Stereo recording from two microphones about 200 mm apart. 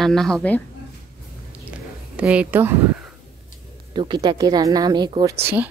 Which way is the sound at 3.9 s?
20° right (ahead or behind).